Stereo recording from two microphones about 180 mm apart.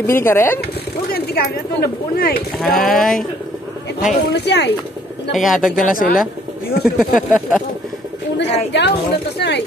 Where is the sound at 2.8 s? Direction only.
Centre (ahead or behind).